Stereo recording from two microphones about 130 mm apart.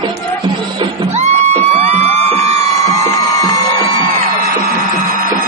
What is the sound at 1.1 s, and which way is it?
Music, 60° right (ahead or behind).